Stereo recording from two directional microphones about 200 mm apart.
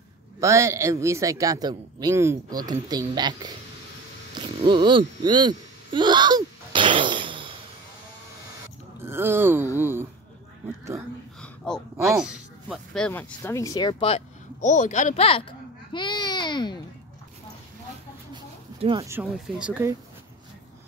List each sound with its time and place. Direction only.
0.4 s speech: 15° right (ahead or behind)
4.6 s speech: 25° right (ahead or behind)
9.0 s speech: 10° right (ahead or behind)
11.4 s gasp: 5° left (ahead or behind)
12.2 s speech: centre (ahead or behind); by 15.4 s 30° left (ahead or behind)
15.9 s babbling: 20° left (ahead or behind)
18.3 s a sound: 25° right (ahead or behind)
19.3 s speech: 5° right (ahead or behind)